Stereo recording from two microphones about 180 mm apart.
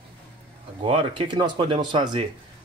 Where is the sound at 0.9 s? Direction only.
30° right (ahead or behind).